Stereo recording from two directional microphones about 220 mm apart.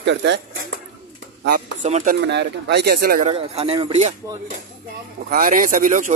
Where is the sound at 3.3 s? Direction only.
25° right (ahead or behind).